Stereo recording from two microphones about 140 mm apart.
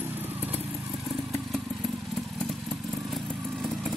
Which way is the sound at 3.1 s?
Centre (ahead or behind).